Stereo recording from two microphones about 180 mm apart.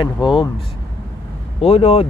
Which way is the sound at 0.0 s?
25° left (ahead or behind).